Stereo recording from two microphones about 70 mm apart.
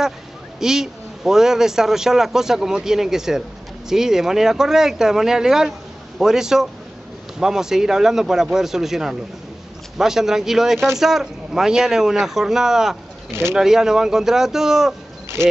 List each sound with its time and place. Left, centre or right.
0.6 s a man's voice: centre
13.3 s speech: right
13.6 s a man's voice: centre